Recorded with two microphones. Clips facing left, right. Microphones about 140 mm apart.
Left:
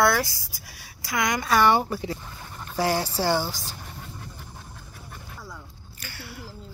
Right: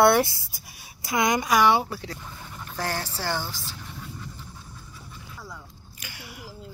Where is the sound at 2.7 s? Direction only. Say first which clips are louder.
Left 6 dB; 10° left (ahead or behind).